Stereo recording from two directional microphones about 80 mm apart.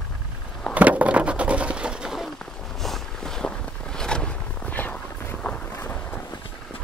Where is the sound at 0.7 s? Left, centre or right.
Centre.